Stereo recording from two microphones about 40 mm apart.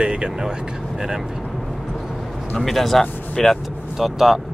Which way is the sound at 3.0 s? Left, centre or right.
Left.